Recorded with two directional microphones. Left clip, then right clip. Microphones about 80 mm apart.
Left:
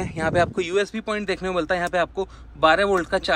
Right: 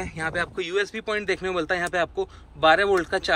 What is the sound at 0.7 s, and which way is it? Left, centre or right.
Speech, left.